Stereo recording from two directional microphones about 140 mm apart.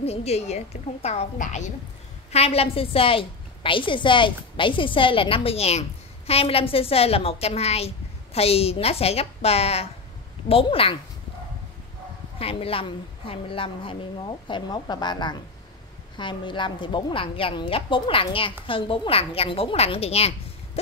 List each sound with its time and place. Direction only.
0.0 s a woman's voice: 45° left (ahead or behind)
2.3 s a woman's voice: 45° left (ahead or behind)
12.4 s a woman's voice: 45° left (ahead or behind)